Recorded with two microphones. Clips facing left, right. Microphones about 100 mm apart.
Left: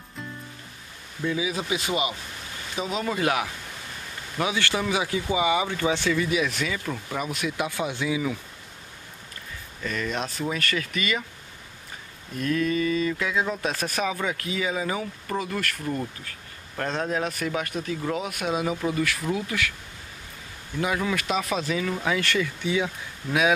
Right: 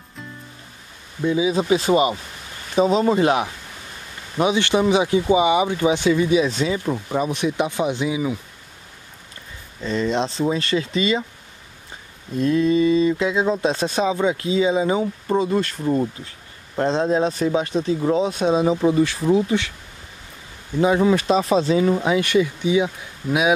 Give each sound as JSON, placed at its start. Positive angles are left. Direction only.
{"t": 1.2, "sound": "speech", "side_deg": -25}
{"t": 9.8, "sound": "speech", "side_deg": -25}
{"t": 12.4, "sound": "speech", "side_deg": -25}
{"t": 20.8, "sound": "speech", "side_deg": -30}